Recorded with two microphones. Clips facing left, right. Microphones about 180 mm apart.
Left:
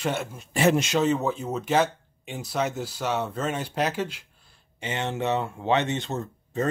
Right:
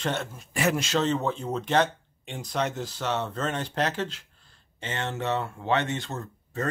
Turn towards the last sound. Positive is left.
turn(degrees=20)  # may be behind; listen again after turning